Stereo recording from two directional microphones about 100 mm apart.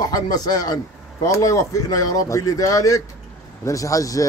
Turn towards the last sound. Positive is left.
turn(degrees=35)  # may be behind; listen again after turning